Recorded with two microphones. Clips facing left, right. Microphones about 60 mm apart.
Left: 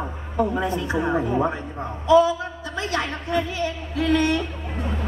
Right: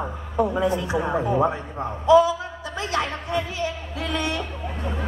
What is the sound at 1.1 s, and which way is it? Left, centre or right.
A man's voice, right.